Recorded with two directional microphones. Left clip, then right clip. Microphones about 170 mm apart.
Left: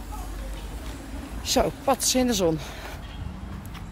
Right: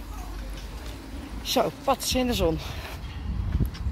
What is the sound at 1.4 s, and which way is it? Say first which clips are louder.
Speech: left 1 dB; 10° left (ahead or behind).